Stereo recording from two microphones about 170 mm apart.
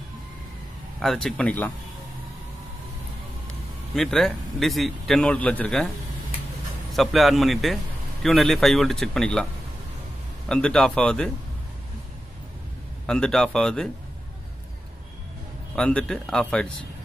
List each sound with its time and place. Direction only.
0.9 s a man's voice: centre (ahead or behind)
3.9 s a man's voice: centre (ahead or behind)
6.9 s a man's voice: centre (ahead or behind)
10.5 s a man's voice: 5° left (ahead or behind)
13.0 s a man's voice: 5° left (ahead or behind)
15.7 s a man's voice: 5° left (ahead or behind)